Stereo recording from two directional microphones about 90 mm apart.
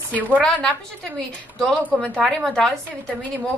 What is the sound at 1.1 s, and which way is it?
A woman's voice, 10° left (ahead or behind).